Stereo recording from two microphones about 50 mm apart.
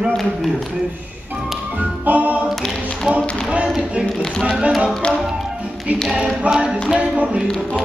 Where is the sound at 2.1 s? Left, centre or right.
Right.